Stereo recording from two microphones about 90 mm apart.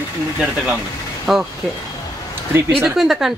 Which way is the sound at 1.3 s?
5° right (ahead or behind).